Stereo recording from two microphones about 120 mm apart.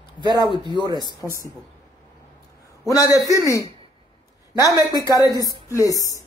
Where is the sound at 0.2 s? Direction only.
40° right (ahead or behind).